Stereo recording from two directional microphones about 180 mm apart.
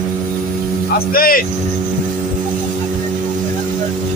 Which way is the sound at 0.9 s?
55° left (ahead or behind).